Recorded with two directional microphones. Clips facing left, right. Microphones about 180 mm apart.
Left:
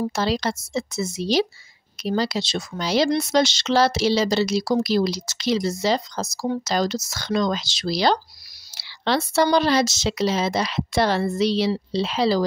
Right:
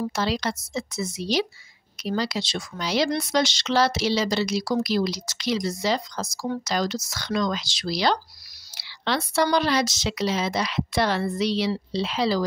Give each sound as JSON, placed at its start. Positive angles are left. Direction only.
{"t": 0.0, "sound": "speech", "side_deg": 30}